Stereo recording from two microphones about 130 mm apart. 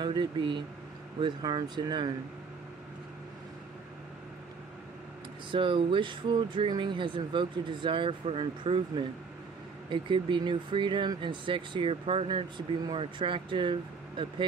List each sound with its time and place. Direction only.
0.0 s speech: 35° right (ahead or behind)
5.5 s speech: 40° right (ahead or behind)